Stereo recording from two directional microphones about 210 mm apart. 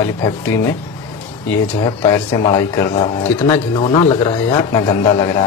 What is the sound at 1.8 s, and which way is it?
A man's voice, 25° left (ahead or behind).